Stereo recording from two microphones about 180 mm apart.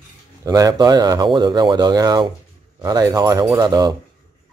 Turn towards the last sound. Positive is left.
turn(degrees=-20)  # may be behind; listen again after turning